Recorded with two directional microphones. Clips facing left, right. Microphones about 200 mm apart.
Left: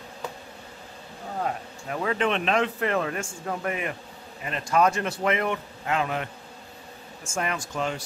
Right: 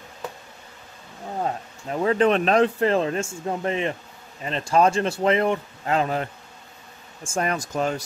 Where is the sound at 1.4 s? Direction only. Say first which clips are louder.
Right 2 dB; 30° right (ahead or behind).